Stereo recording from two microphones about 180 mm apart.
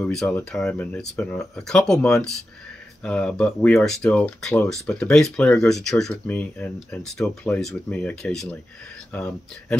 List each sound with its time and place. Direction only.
0.0 s speech: 5° left (ahead or behind)